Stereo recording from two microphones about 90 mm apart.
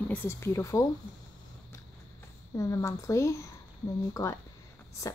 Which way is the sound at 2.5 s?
35° left (ahead or behind).